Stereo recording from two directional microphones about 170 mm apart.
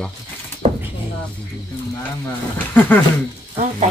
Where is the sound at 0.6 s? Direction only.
35° right (ahead or behind).